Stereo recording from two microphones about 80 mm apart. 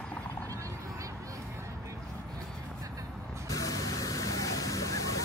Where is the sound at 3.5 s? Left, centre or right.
Left.